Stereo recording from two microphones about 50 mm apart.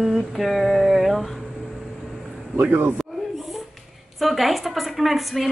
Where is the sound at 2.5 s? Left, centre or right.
Right.